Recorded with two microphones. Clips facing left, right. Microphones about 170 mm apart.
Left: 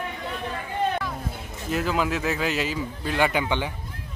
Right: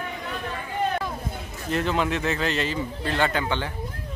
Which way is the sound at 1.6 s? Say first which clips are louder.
Even; 5° left (ahead or behind).